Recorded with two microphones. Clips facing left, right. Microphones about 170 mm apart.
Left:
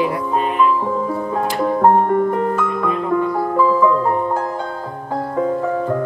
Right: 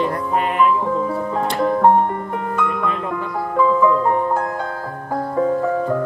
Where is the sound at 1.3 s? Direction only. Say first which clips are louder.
Left 1 dB; 10° left (ahead or behind).